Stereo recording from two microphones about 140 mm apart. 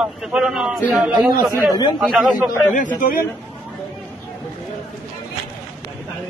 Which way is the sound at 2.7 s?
70° left (ahead or behind).